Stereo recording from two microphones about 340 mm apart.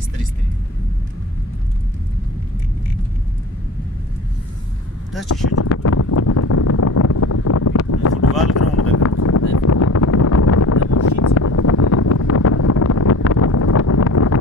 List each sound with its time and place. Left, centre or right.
5.3 s wind noise: left
8.5 s a sound: left
8.9 s wind noise: left